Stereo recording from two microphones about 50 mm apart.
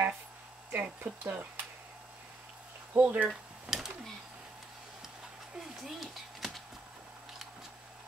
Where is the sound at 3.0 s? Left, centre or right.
Right.